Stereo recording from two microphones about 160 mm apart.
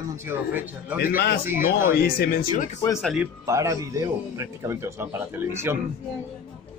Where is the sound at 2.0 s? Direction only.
70° left (ahead or behind).